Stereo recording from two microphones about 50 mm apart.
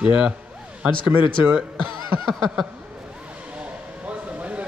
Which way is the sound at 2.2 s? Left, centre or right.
Centre.